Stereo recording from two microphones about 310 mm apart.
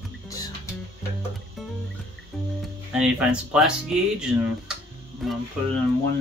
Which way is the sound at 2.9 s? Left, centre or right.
Centre.